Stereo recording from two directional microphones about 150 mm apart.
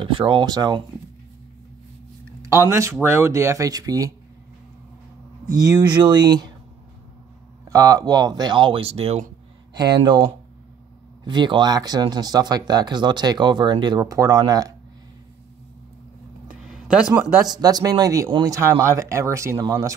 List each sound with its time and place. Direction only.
0.0 s speech: 35° right (ahead or behind)
2.7 s speech: 20° right (ahead or behind)
5.7 s speech: 30° right (ahead or behind)
7.6 s speech: 20° right (ahead or behind); by 9.2 s 45° right (ahead or behind)
9.8 s speech: 30° right (ahead or behind)
16.6 s speech: 5° right (ahead or behind)
17.5 s speech: 25° right (ahead or behind)